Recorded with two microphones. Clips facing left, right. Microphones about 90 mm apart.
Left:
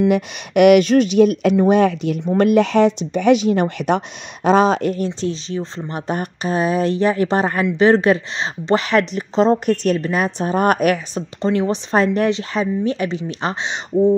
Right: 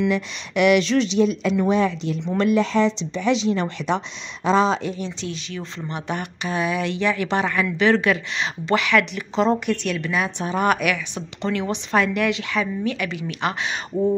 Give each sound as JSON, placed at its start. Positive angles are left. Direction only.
{"t": 0.1, "sound": "speech", "side_deg": 60}
{"t": 5.2, "sound": "speech", "side_deg": 35}
{"t": 11.4, "sound": "speech", "side_deg": 30}